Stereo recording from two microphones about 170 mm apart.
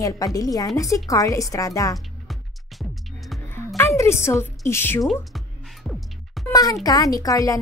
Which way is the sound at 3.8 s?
15° left (ahead or behind).